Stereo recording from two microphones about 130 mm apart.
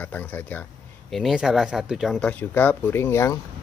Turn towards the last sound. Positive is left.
turn(degrees=20)  # may be behind; listen again after turning